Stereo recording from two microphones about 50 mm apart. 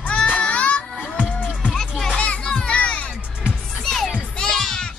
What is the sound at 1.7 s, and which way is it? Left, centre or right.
Music, centre.